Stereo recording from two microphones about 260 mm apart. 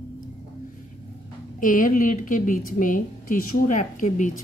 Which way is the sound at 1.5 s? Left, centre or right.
Left.